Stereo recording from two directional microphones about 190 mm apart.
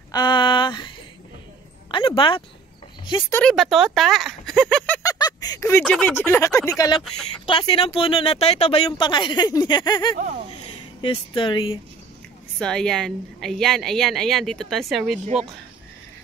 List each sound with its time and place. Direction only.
0.1 s speech: 25° left (ahead or behind)
3.3 s speech: 10° left (ahead or behind)
3.5 s speech: centre (ahead or behind)
5.0 s a sound: 20° left (ahead or behind)
5.9 s speech: 5° left (ahead or behind)
7.4 s speech: 30° left (ahead or behind)
10.1 s speech: 40° right (ahead or behind)
11.0 s speech: 25° left (ahead or behind)
12.5 s a woman's voice: 5° left (ahead or behind)